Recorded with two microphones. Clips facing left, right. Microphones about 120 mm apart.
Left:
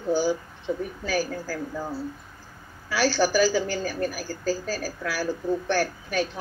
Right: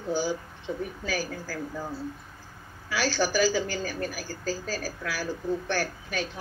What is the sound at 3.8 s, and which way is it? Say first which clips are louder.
A woman's voice: left 4 dB; 15° left (ahead or behind).